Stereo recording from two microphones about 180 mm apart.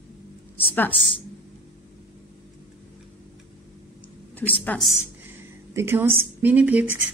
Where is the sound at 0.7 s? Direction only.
10° left (ahead or behind).